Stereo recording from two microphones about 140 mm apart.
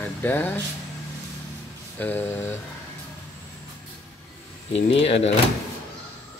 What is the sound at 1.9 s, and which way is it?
Speech, 15° left (ahead or behind).